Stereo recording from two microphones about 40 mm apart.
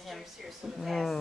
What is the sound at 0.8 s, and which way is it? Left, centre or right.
Speech, centre.